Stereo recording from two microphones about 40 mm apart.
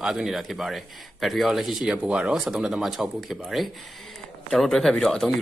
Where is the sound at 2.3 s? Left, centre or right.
Centre.